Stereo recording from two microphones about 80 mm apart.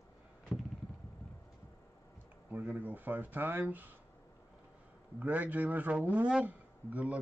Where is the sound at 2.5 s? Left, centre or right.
Right.